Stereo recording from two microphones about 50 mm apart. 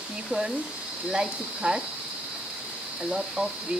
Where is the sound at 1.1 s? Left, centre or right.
Centre.